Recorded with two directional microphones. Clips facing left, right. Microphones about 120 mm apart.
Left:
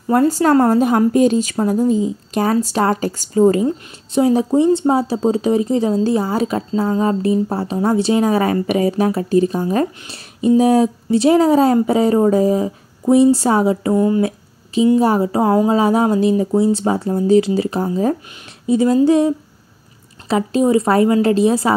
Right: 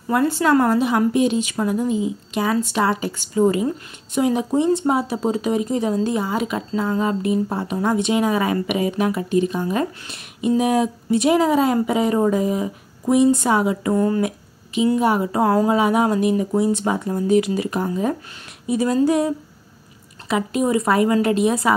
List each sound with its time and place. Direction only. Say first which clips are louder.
0.1 s speech: left 4 dB; 40° left (ahead or behind)
13.9 s speech: left 3 dB; 15° left (ahead or behind)
14.2 s a sound: left 4 dB; 35° left (ahead or behind)
15.0 s speech: left 3 dB; 35° left (ahead or behind)